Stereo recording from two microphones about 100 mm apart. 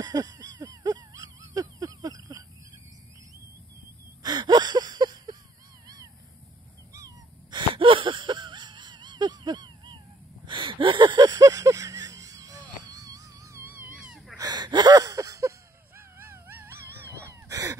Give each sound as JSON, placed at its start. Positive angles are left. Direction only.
{"t": 0.0, "sound": "a sound", "side_deg": -40}
{"t": 4.2, "sound": "gasp", "side_deg": -45}
{"t": 7.5, "sound": "a sound", "side_deg": -60}
{"t": 13.7, "sound": "wail", "side_deg": -15}
{"t": 14.3, "sound": "gasp", "side_deg": -45}
{"t": 16.2, "sound": "wail", "side_deg": -25}